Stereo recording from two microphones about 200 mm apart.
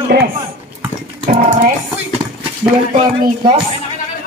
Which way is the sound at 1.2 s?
35° right (ahead or behind).